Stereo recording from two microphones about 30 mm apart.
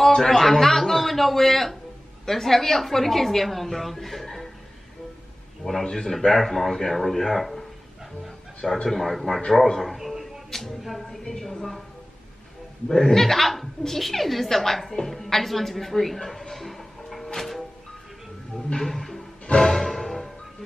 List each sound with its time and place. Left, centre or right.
0.1 s speech: centre
5.6 s speech: centre
8.8 s speech: centre
9.9 s a sound: centre
10.8 s speech: centre
12.8 s speech: centre
17.4 s music: centre
18.9 s music: centre
19.4 s music: left
19.7 s music: centre